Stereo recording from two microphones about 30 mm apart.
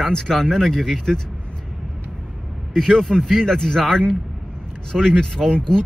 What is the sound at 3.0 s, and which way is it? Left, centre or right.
Speech, centre.